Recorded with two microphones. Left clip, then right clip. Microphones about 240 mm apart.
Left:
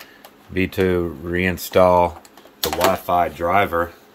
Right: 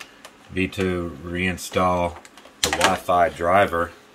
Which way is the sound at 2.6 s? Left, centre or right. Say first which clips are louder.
Left 1 dB; left.